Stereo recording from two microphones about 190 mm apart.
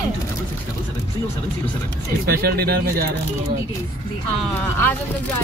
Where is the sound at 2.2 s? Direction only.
55° right (ahead or behind).